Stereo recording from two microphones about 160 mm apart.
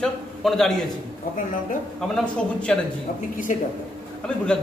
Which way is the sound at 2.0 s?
Centre (ahead or behind).